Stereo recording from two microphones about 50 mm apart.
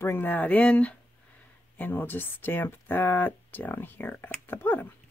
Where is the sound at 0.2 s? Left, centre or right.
Left.